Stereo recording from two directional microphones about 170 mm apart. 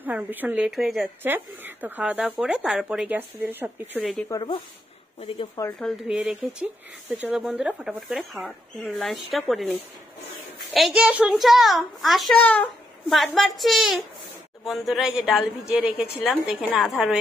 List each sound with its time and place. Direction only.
0.0 s speech: 10° right (ahead or behind)
1.2 s speech: 10° right (ahead or behind)
4.3 s speech: 25° left (ahead or behind)
5.8 s a woman's voice: centre (ahead or behind)